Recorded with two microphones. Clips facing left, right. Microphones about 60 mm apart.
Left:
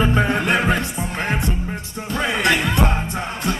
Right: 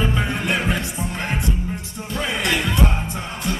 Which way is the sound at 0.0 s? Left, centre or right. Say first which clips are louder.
Left 4 dB; left.